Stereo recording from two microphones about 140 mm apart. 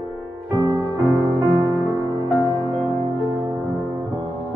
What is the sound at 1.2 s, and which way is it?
Music, 30° right (ahead or behind).